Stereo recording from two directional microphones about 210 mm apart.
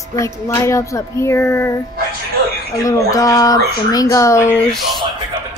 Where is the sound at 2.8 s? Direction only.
15° left (ahead or behind).